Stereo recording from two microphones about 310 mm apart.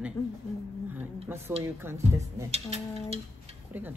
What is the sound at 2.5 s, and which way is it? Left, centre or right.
Speech, centre.